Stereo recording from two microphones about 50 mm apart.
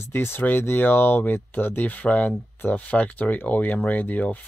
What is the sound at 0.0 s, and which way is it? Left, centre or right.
Speech, left.